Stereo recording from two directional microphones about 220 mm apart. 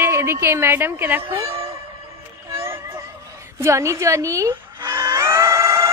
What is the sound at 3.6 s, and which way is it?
Livestock, 15° right (ahead or behind).